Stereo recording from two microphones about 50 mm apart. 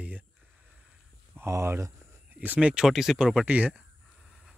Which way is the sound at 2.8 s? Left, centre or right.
Centre.